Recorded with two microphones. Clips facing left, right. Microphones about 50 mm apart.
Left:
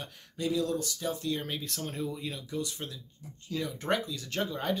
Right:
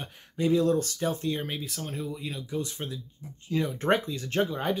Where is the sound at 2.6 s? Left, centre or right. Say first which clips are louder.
Right 4 dB; right.